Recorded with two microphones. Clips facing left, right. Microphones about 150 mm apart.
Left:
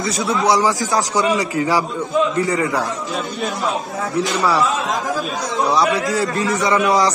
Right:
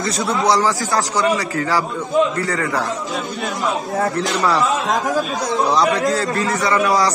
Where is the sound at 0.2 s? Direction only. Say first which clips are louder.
Left 1 dB; 45° right (ahead or behind).